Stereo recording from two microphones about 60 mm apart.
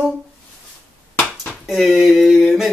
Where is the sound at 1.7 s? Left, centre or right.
Centre.